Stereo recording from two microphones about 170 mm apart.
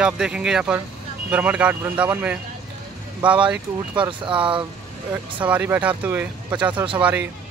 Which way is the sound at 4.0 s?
30° right (ahead or behind).